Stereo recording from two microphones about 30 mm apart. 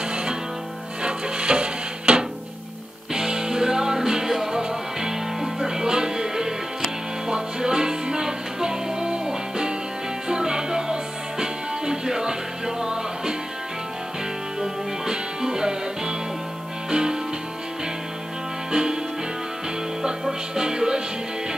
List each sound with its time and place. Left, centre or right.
0.1 s music: right
1.0 s wood: right
3.2 s music: right
14.6 s music: right
18.7 s music: right
20.0 s music: right